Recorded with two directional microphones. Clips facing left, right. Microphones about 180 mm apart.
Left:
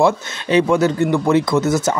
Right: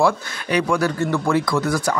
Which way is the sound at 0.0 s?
25° left (ahead or behind).